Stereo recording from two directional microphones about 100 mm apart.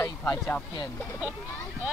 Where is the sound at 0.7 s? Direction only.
35° left (ahead or behind).